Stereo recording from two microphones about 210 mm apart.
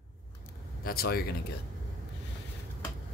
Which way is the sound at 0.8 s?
45° left (ahead or behind).